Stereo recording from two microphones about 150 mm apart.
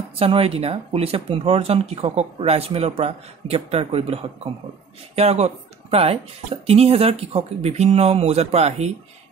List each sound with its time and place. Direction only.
0.2 s speech: 40° right (ahead or behind)